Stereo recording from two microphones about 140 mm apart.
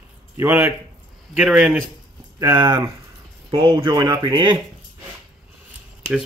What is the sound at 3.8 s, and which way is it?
Speech, 35° right (ahead or behind).